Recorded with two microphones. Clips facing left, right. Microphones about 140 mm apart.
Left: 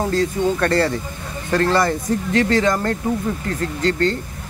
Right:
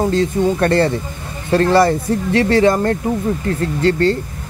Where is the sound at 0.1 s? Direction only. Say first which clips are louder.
Right 3 dB; 25° right (ahead or behind).